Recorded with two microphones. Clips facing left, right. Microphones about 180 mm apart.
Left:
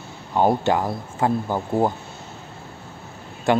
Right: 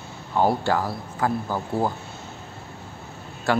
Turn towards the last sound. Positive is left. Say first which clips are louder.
# left 3 dB
turn(degrees=20)  # may be behind; listen again after turning